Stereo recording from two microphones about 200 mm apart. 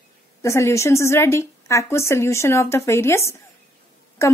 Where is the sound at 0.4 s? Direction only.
15° left (ahead or behind).